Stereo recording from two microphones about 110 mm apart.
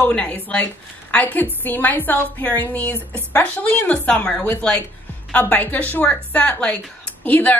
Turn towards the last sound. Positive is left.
turn(degrees=15)  # may be behind; listen again after turning